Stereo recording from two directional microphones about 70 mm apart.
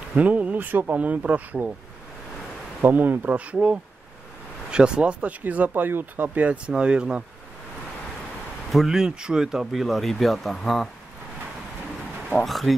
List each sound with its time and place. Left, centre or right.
0.1 s speech: centre
2.8 s speech: right
8.6 s speech: centre
12.4 s speech: centre